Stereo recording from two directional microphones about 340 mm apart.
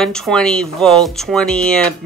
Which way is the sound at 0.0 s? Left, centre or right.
Centre.